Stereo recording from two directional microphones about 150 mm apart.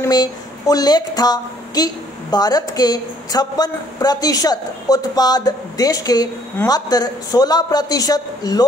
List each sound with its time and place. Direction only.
0.0 s a woman's voice: 25° left (ahead or behind)